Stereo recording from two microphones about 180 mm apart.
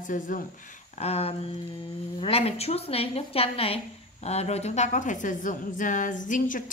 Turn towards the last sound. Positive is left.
turn(degrees=45)  # may be behind; listen again after turning